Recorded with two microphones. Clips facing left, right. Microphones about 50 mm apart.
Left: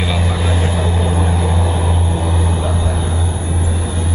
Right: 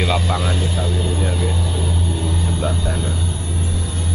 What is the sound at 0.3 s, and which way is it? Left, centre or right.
Vehicle, centre.